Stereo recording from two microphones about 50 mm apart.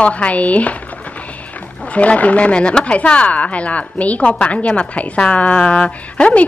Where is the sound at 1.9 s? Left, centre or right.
Left.